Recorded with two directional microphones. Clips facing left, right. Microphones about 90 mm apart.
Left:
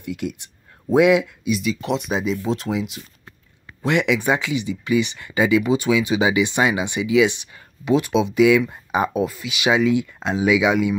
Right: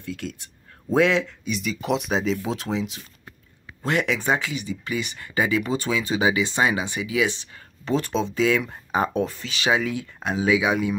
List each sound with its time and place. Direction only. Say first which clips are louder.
0.0 s speech: left 5 dB; 20° left (ahead or behind); by 3.0 s centre (ahead or behind)
3.8 s speech: left 4 dB; 20° left (ahead or behind)